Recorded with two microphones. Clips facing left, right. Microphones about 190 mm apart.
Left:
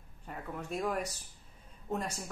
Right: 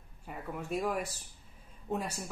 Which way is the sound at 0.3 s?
5° right (ahead or behind).